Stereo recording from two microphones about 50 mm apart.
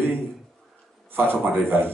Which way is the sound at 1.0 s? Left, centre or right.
Right.